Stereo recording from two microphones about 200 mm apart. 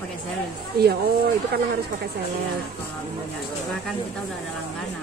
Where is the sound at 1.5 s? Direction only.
50° right (ahead or behind).